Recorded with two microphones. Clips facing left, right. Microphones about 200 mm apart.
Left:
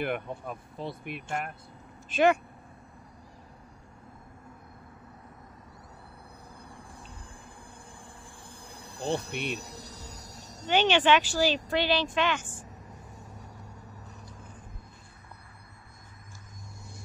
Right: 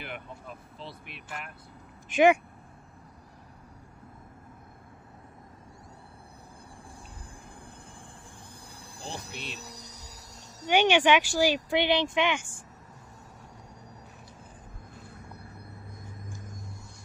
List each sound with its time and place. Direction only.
0.0 s insect: 55° left (ahead or behind)
0.5 s speech: 50° left (ahead or behind)
2.0 s speech: 15° right (ahead or behind)
9.0 s insect: 60° left (ahead or behind)
10.6 s speech: 10° right (ahead or behind)